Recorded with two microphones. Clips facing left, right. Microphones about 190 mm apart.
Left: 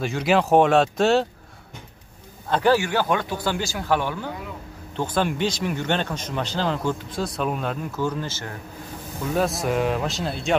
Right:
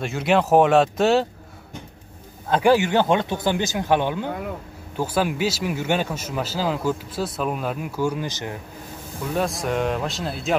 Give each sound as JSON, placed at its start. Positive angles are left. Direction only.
{"t": 0.0, "sound": "speech", "side_deg": 0}
{"t": 2.5, "sound": "a man's voice", "side_deg": -15}
{"t": 4.9, "sound": "a man's voice", "side_deg": -5}
{"t": 9.3, "sound": "speech", "side_deg": 0}